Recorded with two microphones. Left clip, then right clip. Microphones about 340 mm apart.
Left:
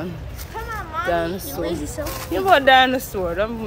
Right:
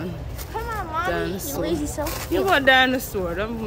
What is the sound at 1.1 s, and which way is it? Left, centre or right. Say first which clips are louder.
Speech: left 4 dB; centre.